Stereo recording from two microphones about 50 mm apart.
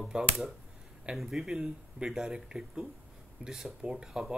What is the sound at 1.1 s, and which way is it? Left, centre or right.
Speech, centre.